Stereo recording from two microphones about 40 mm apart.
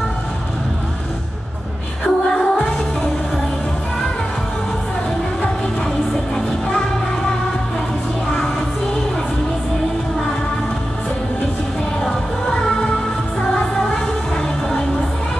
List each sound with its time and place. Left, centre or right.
2.0 s music: centre
5.9 s music: centre